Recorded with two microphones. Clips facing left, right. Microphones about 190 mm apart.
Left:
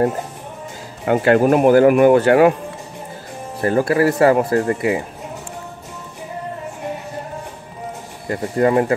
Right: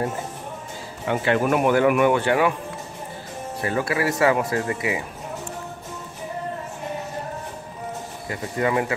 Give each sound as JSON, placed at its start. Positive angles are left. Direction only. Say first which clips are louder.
{"t": 1.0, "sound": "speech", "louder": "left 7 dB", "side_deg": 50}
{"t": 3.6, "sound": "speech", "louder": "left 8 dB", "side_deg": 45}
{"t": 8.3, "sound": "speech", "louder": "left 7 dB", "side_deg": 45}